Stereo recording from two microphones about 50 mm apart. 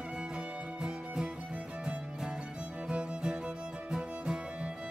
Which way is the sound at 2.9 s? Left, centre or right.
Right.